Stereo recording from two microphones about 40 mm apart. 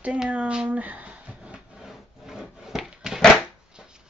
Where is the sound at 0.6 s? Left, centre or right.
Right.